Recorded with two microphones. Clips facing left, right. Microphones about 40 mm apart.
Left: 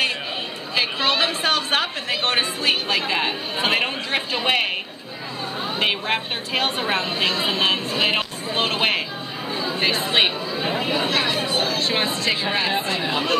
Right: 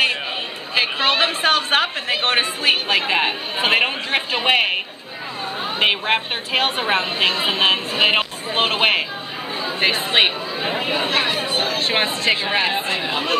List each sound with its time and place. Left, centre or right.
0.7 s a woman's voice: right
5.8 s a woman's voice: right
9.6 s chatter: right
9.9 s a woman's voice: centre